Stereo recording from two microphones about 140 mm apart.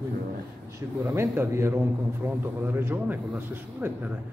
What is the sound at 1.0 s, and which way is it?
A man's voice, 15° right (ahead or behind).